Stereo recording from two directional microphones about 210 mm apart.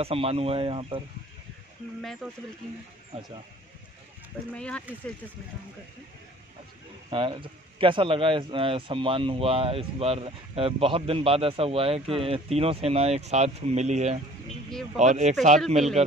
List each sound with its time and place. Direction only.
0.0 s speech: 30° right (ahead or behind)
3.1 s speech: 30° right (ahead or behind)
4.6 s speech: 5° left (ahead or behind)
7.1 s speech: 25° right (ahead or behind)